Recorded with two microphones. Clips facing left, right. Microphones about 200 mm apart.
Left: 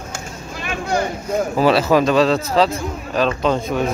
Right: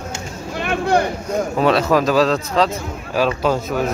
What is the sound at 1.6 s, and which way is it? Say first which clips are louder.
Speech: left 1 dB; 5° left (ahead or behind).